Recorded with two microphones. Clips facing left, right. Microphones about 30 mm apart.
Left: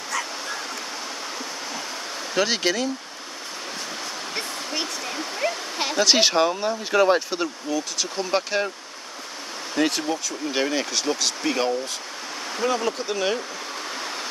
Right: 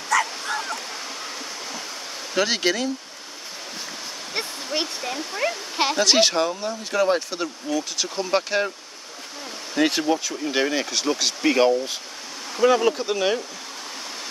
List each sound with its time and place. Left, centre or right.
0.1 s bow-wow: right
2.3 s speech: centre
5.0 s speech: centre
6.5 s speech: centre
7.7 s speech: centre
9.8 s speech: centre
12.9 s speech: centre